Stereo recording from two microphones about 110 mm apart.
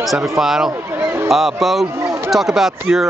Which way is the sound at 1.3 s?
Centre (ahead or behind).